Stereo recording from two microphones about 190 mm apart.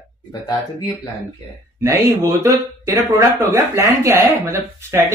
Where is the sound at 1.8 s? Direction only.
15° right (ahead or behind).